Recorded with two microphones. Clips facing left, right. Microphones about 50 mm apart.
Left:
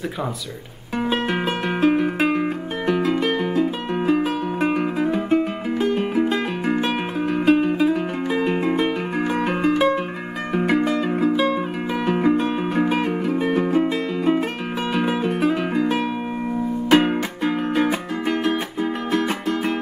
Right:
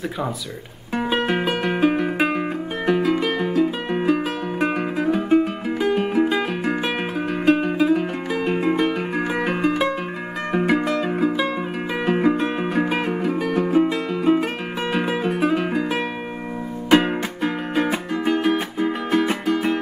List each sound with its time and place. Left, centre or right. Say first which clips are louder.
0.9 s music: right 1 dB; centre